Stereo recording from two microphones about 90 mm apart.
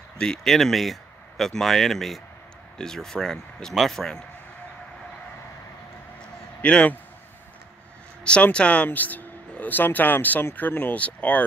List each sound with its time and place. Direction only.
0.2 s speech: 5° left (ahead or behind)
6.6 s a man's voice: 15° left (ahead or behind)
8.2 s speech: 10° left (ahead or behind)